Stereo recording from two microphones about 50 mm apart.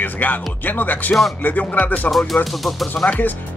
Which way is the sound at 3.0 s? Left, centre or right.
Left.